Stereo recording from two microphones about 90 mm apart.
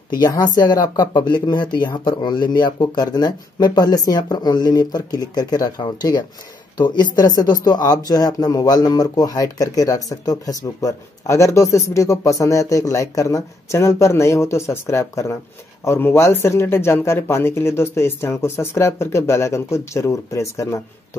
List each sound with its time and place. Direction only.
0.1 s speech: 45° left (ahead or behind)